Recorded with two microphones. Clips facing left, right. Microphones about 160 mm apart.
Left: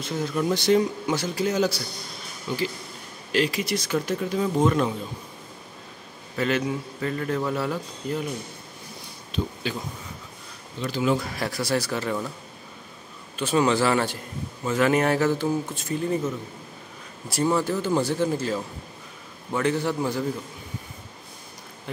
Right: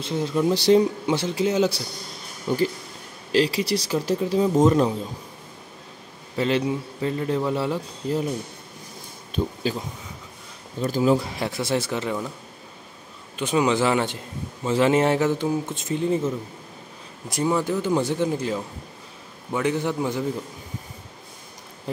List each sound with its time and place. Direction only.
0.0 s a man's voice: 30° right (ahead or behind)
2.5 s speech: 50° right (ahead or behind)
3.3 s speech: 30° right (ahead or behind)
6.3 s a man's voice: 30° right (ahead or behind)
9.3 s a sound: 40° right (ahead or behind)
10.8 s speech: 40° right (ahead or behind)
11.2 s a man's voice: 20° right (ahead or behind)
13.4 s a man's voice: 15° right (ahead or behind)
17.3 s speech: 15° right (ahead or behind)